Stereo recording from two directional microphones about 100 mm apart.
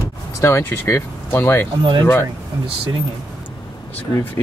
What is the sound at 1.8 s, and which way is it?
Speech, 55° right (ahead or behind).